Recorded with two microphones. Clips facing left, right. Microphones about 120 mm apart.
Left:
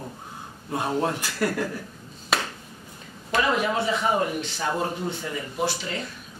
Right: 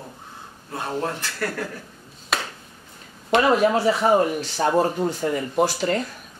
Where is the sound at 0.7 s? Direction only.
15° left (ahead or behind).